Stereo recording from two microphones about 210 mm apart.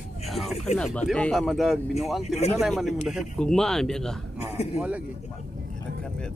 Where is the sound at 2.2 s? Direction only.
30° left (ahead or behind).